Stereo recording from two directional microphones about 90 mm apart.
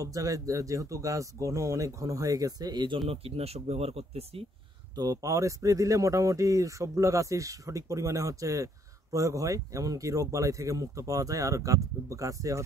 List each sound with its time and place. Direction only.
0.0 s speech: 40° right (ahead or behind); by 3.0 s 55° right (ahead or behind)
3.9 s speech: 90° right
4.9 s speech: 45° right (ahead or behind)